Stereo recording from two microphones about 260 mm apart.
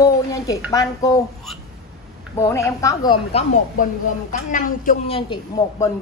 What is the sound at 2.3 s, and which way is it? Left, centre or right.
A woman's voice, centre.